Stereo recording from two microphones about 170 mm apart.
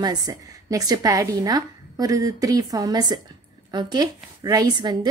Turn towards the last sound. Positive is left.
turn(degrees=-25)  # may be behind; listen again after turning